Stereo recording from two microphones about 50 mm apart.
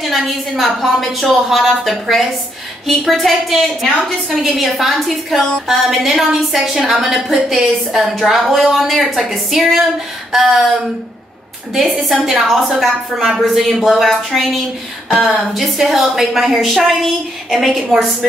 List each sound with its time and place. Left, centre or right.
0.0 s a woman's voice: centre
11.7 s a woman's voice: centre